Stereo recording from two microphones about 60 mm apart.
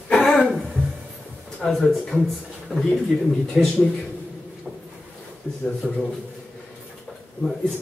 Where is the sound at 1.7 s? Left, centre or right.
Centre.